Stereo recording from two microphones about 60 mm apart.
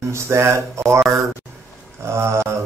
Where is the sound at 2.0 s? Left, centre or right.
Right.